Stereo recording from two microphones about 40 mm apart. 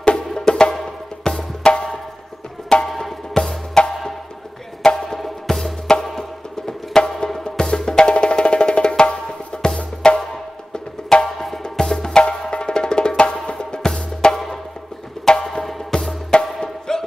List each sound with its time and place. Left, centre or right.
0.5 s music: centre
11.3 s music: centre